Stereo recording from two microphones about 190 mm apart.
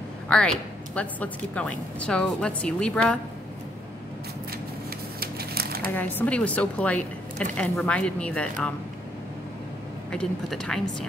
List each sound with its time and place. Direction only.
0.3 s a woman's voice: 5° left (ahead or behind)
5.2 s a sound: 55° right (ahead or behind)
5.9 s a woman's voice: 10° left (ahead or behind)
10.1 s a woman's voice: 5° left (ahead or behind)